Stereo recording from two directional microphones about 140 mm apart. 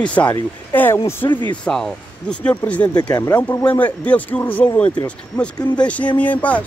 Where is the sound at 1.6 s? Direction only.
5° left (ahead or behind).